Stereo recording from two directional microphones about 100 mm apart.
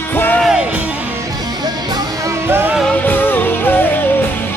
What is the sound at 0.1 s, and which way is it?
Music, 20° left (ahead or behind).